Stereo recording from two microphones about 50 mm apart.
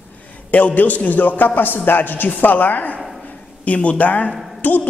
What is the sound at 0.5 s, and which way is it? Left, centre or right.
A man's voice, left.